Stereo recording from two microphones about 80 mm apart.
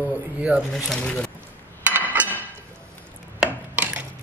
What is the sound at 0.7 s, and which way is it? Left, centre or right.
Speech, centre.